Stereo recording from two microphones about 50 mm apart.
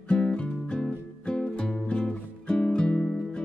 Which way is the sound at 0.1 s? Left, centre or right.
Left.